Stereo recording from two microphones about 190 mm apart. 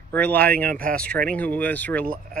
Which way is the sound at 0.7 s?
45° right (ahead or behind).